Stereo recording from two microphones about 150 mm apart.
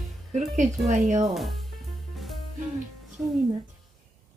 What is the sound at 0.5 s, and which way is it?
Speech, 50° right (ahead or behind).